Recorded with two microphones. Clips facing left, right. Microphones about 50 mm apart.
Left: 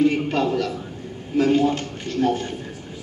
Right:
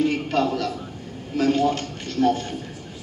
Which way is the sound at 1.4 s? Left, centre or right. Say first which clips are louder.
Left 2 dB; left.